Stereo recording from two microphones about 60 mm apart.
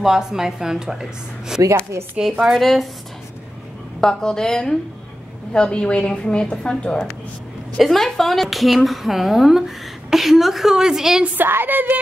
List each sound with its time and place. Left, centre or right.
0.0 s a woman's voice: centre
4.0 s a woman's voice: centre
7.8 s speech: centre
11.3 s speech: right